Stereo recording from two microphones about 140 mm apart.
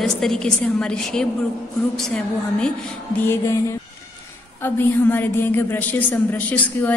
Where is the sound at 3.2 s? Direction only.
15° left (ahead or behind).